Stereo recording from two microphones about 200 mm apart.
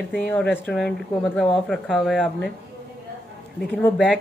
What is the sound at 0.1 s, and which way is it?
Speech, 5° left (ahead or behind).